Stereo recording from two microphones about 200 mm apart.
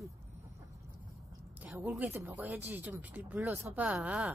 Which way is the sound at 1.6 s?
5° right (ahead or behind).